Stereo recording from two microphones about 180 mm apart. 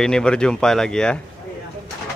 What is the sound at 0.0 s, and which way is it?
Speech, 5° left (ahead or behind).